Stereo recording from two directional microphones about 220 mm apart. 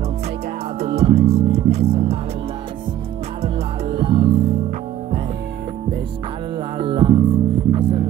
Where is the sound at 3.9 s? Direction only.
25° right (ahead or behind).